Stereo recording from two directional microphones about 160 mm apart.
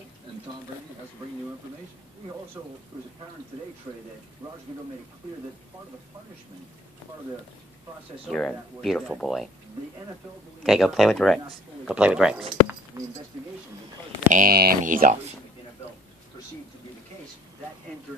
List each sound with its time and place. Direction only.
8.3 s speech: 5° left (ahead or behind)
10.6 s speech: centre (ahead or behind)
13.0 s speech: 20° right (ahead or behind)
14.3 s speech: 65° right (ahead or behind)